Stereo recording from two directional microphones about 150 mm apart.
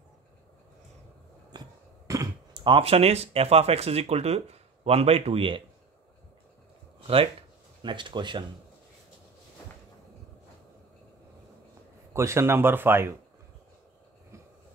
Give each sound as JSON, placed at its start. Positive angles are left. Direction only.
{"t": 1.5, "sound": "cough", "side_deg": -30}
{"t": 2.0, "sound": "a sound", "side_deg": -20}
{"t": 2.6, "sound": "speech", "side_deg": -40}
{"t": 7.0, "sound": "a sound", "side_deg": -40}
{"t": 7.8, "sound": "speech", "side_deg": -30}
{"t": 12.1, "sound": "speech", "side_deg": -20}